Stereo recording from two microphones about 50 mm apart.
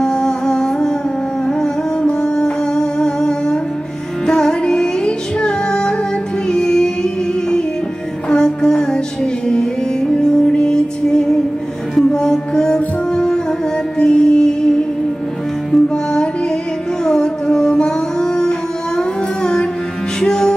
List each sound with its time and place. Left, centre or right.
0.0 s music: centre
8.3 s music: centre
15.7 s music: centre